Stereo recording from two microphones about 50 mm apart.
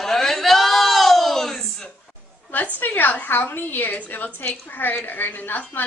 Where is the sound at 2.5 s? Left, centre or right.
Left.